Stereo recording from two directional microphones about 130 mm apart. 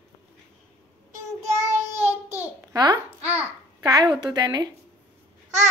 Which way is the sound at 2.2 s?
15° right (ahead or behind).